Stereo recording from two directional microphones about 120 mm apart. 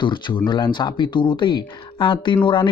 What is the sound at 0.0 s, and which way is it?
Speech, 40° left (ahead or behind).